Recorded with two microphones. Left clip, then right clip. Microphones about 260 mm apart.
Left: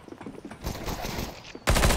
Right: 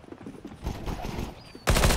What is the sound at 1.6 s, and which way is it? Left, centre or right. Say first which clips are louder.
Machine gun: even; centre.